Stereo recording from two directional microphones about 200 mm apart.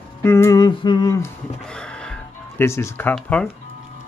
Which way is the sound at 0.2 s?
10° left (ahead or behind).